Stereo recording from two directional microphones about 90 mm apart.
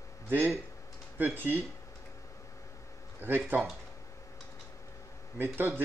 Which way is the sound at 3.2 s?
20° right (ahead or behind).